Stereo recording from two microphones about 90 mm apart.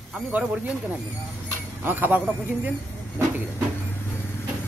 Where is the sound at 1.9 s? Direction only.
20° right (ahead or behind).